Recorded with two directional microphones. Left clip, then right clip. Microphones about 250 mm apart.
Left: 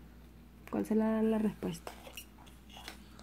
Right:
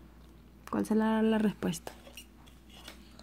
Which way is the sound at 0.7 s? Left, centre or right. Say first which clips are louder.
Right 3 dB; right.